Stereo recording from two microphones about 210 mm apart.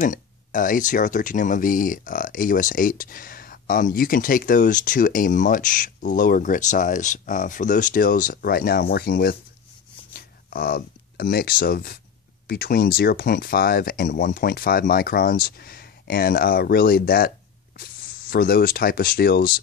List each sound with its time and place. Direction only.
0.0 s speech: 40° left (ahead or behind)
18.3 s speech: 45° left (ahead or behind)